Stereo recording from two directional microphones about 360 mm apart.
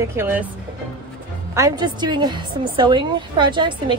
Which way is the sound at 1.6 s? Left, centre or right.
Centre.